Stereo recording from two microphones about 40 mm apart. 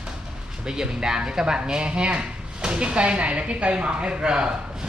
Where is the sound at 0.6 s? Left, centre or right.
Centre.